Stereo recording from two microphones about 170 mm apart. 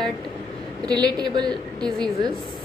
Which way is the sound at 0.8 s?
25° right (ahead or behind).